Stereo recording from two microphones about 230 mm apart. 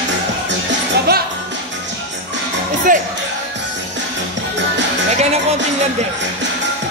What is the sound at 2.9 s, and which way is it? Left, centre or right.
Speech, right.